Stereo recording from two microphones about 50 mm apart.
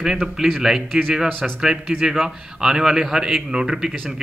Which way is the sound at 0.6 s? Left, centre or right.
Centre.